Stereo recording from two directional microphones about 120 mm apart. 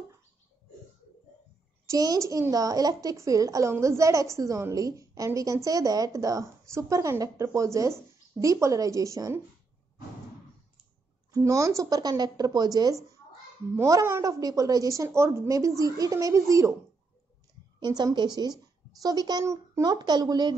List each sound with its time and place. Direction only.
1.9 s a woman's voice: 30° right (ahead or behind)
11.3 s a woman's voice: 25° right (ahead or behind)
17.7 s speech: 35° right (ahead or behind)